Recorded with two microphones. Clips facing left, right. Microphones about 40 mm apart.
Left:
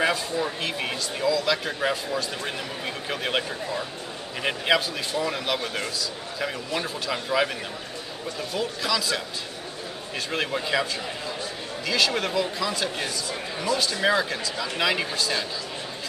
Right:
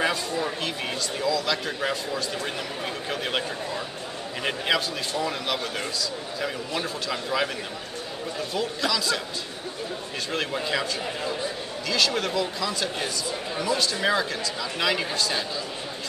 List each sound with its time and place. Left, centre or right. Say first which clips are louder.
0.0 s a man's voice: left 1 dB; centre
7.1 s a man's voice: left 3 dB; centre
8.5 s a man's voice: even; centre
10.3 s a man's voice: left 2 dB; centre
11.9 s a man's voice: left 1 dB; centre